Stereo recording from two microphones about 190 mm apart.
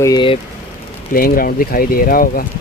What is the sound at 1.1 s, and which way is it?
Speech, 50° left (ahead or behind).